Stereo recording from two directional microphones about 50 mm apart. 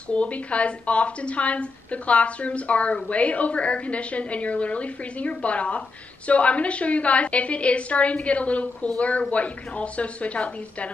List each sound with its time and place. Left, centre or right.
0.1 s a woman's voice: left